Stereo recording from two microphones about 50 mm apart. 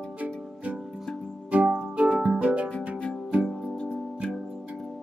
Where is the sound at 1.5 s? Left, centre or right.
Right.